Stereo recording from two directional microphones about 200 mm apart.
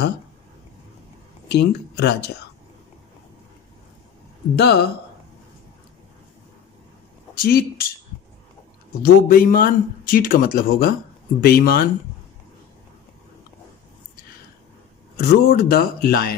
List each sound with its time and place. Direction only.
1.5 s speech: 55° left (ahead or behind)
4.6 s speech: 55° left (ahead or behind)
7.4 s speech: 50° left (ahead or behind)
9.0 s speech: 45° left (ahead or behind)
15.1 s speech: 50° left (ahead or behind)